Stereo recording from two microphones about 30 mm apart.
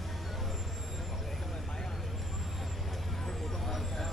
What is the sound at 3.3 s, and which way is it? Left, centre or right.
Vehicle, centre.